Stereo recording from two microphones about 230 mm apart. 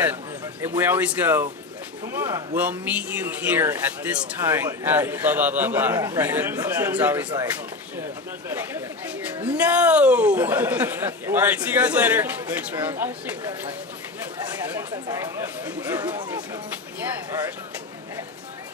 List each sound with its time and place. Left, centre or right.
0.0 s a sound: centre
0.7 s a man's voice: centre
9.4 s a man's voice: centre
15.0 s a man's voice: centre
15.6 s speech: centre